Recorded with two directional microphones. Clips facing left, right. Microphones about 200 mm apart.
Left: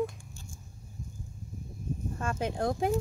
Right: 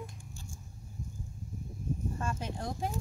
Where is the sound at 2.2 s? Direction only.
65° left (ahead or behind).